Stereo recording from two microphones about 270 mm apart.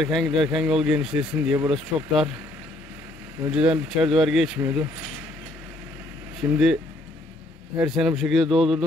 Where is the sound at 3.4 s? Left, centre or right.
Centre.